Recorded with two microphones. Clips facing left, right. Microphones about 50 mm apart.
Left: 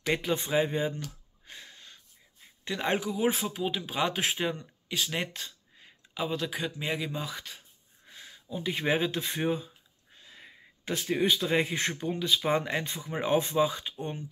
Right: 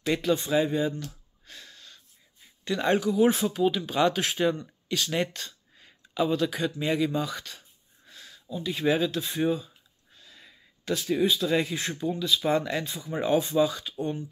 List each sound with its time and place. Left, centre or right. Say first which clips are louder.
0.3 s speech: right 4 dB; left
1.5 s wheeze: even; left
2.6 s speech: right 5 dB; centre
8.1 s a sound: even; centre
8.5 s speech: right 3 dB; left
10.1 s a sound: left 1 dB; left
12.0 s speech: right 5 dB; left